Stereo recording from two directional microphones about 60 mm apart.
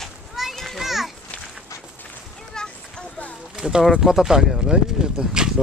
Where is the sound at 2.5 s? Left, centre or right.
Centre.